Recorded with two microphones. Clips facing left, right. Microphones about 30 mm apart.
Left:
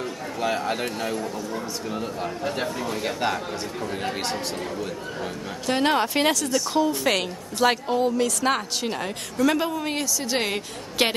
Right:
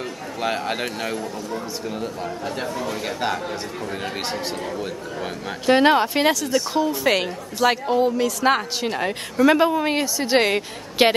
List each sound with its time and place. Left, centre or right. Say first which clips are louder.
0.4 s a man's voice: right 1 dB; right
3.0 s a man's voice: left 1 dB; centre
5.7 s a man's voice: right 7 dB; centre
5.9 s a woman's voice: right 3 dB; centre